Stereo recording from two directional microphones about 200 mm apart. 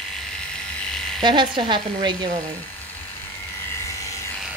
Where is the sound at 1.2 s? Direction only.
25° right (ahead or behind).